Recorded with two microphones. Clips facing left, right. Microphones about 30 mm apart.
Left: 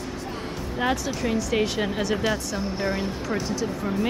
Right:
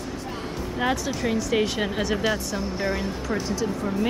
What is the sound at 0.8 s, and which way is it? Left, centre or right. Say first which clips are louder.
Speech: even; centre.